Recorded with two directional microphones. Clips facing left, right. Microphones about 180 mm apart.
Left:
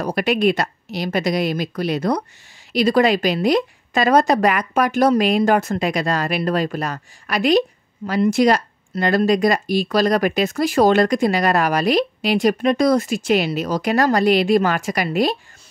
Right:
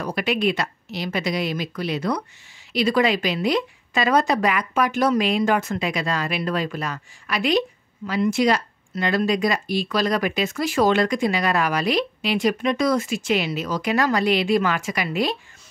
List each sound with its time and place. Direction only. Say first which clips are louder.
0.0 s a woman's voice: left 4 dB; 40° left (ahead or behind)